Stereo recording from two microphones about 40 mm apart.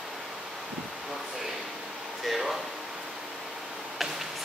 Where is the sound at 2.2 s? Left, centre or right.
Centre.